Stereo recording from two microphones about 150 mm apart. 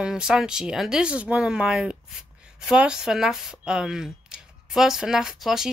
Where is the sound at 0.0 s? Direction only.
5° right (ahead or behind).